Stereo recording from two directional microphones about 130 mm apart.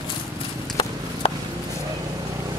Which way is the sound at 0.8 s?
40° left (ahead or behind).